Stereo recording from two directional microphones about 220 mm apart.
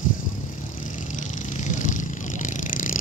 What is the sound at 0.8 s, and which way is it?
Vehicle, 35° left (ahead or behind).